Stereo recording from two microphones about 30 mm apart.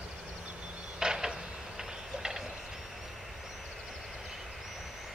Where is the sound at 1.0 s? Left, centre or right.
Right.